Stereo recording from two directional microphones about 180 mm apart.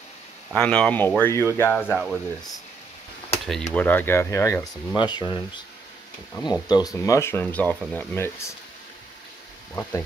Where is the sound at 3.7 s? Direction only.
10° left (ahead or behind).